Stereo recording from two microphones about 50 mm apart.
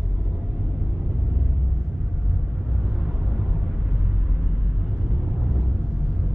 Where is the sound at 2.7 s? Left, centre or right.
Centre.